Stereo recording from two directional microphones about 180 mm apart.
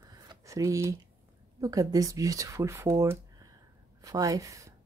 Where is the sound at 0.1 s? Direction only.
20° right (ahead or behind).